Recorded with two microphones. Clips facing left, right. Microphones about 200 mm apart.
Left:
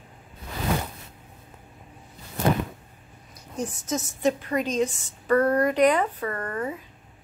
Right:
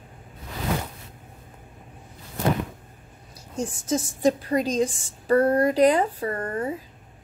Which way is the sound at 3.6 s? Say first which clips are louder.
Right 3 dB; 30° right (ahead or behind).